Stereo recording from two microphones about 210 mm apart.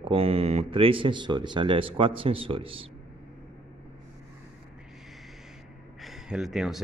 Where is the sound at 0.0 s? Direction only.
25° right (ahead or behind).